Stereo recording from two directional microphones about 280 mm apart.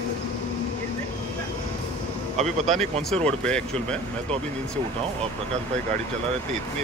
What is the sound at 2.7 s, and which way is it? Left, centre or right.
Speech, centre.